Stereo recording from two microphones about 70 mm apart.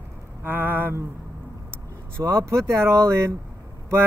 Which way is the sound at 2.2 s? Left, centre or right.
Right.